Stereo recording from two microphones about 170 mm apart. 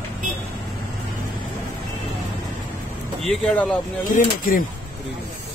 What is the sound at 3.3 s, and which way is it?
Speech, 10° left (ahead or behind).